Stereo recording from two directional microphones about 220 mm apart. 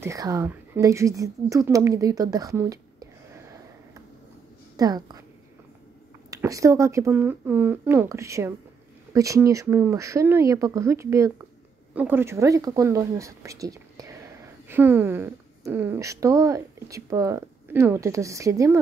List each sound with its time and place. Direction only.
0.0 s speech: 15° right (ahead or behind)
4.7 s speech: 20° right (ahead or behind)
6.3 s speech: 15° right (ahead or behind)